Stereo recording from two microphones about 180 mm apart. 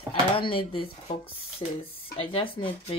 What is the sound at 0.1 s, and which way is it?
Speech, 30° left (ahead or behind).